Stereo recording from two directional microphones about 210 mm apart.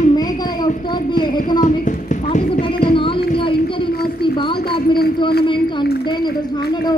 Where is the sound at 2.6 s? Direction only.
25° left (ahead or behind).